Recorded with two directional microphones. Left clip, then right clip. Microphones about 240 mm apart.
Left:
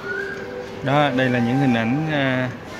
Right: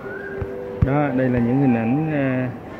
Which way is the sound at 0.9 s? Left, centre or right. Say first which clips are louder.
Left 3 dB; centre.